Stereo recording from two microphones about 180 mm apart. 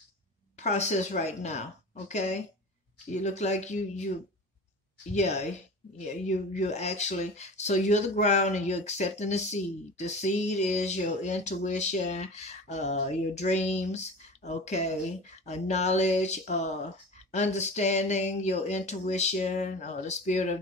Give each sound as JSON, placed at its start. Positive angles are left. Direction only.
{"t": 0.6, "sound": "speech", "side_deg": 40}
{"t": 5.1, "sound": "speech", "side_deg": 40}